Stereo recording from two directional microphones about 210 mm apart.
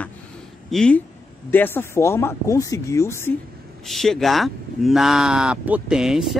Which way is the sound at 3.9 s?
Centre (ahead or behind).